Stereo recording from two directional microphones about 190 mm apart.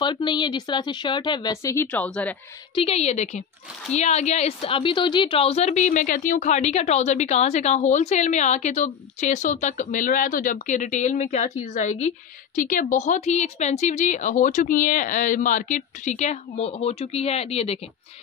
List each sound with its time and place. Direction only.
0.0 s a woman's voice: 25° left (ahead or behind)
1.9 s a woman's voice: 5° left (ahead or behind)
2.7 s a woman's voice: 30° left (ahead or behind)